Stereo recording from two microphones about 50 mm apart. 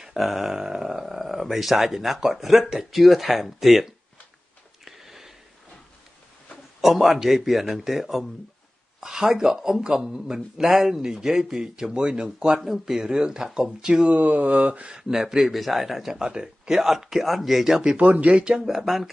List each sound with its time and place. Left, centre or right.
0.0 s speech: centre
4.8 s sniff: centre
6.8 s speech: centre
14.1 s speech: right; by 17.9 s centre
17.9 s speech: right
18.6 s speech: centre